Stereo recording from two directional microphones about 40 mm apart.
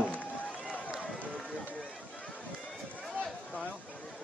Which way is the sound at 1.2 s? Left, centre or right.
Left.